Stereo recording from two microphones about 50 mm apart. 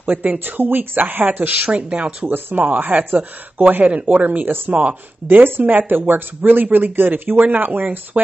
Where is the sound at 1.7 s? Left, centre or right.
Right.